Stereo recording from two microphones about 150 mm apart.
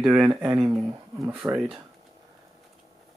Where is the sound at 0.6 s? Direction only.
20° right (ahead or behind).